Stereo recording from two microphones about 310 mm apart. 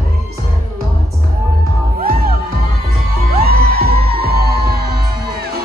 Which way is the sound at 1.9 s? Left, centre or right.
Right.